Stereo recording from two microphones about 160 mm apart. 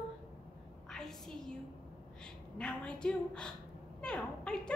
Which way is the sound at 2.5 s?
5° left (ahead or behind).